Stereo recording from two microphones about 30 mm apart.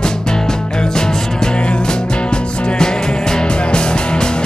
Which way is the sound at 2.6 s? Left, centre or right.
Left.